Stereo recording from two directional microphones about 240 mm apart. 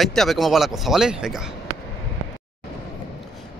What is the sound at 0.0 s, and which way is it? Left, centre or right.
Speech, centre.